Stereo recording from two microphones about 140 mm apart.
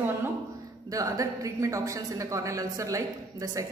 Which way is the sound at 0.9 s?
25° right (ahead or behind).